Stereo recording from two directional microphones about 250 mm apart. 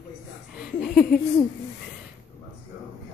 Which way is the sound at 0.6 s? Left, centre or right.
Centre.